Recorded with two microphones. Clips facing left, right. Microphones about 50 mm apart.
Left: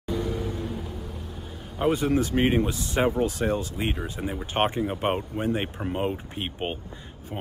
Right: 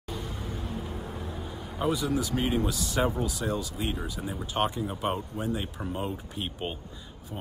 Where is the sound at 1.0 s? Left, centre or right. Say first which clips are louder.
Right 1 dB; right.